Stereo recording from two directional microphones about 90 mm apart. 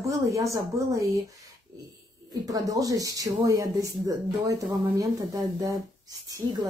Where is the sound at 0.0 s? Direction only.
35° right (ahead or behind).